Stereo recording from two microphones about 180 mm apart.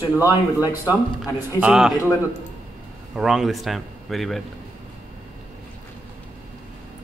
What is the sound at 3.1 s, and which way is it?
Speech, centre (ahead or behind).